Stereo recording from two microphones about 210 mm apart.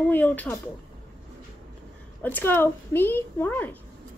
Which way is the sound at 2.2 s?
10° left (ahead or behind).